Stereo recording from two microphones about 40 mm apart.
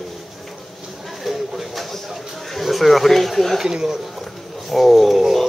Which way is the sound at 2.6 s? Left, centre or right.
Centre.